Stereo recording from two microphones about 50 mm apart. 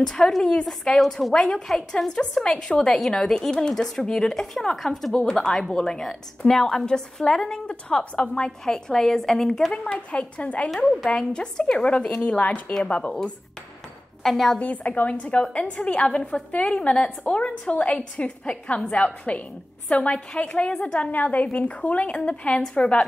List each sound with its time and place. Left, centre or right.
0.0 s a woman's voice: centre
5.1 s a woman's voice: centre
9.8 s a woman's voice: left
12.7 s a woman's voice: centre
14.2 s a woman's voice: centre
14.6 s a woman's voice: left